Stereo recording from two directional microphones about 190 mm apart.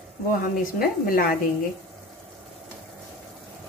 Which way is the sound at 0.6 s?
50° left (ahead or behind).